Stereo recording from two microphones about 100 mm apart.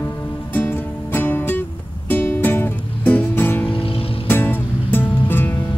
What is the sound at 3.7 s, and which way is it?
Music, 65° left (ahead or behind).